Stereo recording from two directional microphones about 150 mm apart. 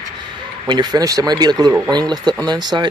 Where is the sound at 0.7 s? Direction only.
30° right (ahead or behind).